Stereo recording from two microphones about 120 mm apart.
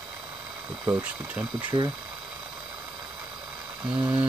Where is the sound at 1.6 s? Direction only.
40° right (ahead or behind).